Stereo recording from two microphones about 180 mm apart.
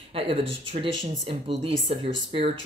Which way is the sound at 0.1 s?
30° right (ahead or behind).